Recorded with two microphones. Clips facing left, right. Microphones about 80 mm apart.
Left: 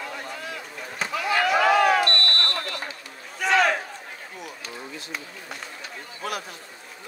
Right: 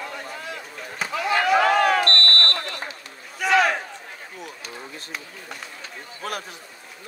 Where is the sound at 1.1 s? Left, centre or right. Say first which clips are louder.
Right 1 dB; right.